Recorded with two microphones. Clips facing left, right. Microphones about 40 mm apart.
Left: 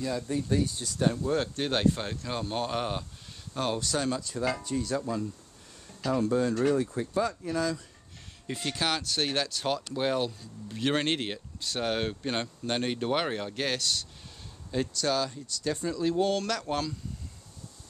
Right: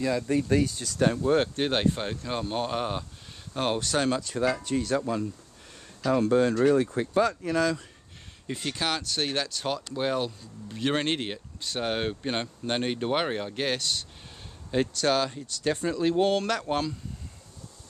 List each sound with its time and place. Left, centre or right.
0.0 s speech: right
1.1 s speech: right
1.6 s speech: centre
3.5 s speech: right
3.8 s speech: right
8.5 s speech: centre
14.7 s speech: right
16.3 s speech: right